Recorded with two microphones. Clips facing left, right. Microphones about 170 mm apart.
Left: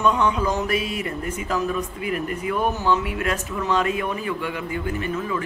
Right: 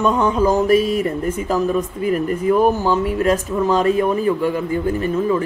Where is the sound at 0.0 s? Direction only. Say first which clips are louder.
Right 4 dB; 45° right (ahead or behind).